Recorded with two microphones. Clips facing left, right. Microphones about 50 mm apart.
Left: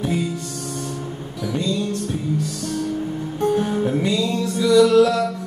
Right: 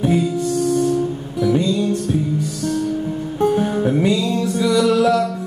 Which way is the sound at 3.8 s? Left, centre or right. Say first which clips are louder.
Right 3 dB; centre.